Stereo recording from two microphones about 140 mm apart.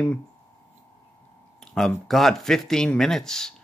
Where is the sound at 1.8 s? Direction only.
Centre (ahead or behind).